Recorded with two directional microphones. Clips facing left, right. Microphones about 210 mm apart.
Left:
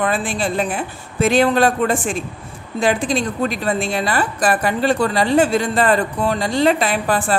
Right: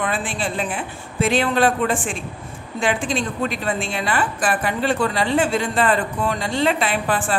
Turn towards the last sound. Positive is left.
turn(degrees=40)  # may be behind; listen again after turning